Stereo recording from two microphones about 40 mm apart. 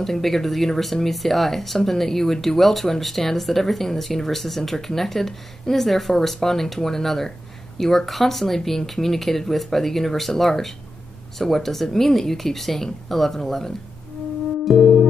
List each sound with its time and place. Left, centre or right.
0.0 s speech: centre
14.7 s music: centre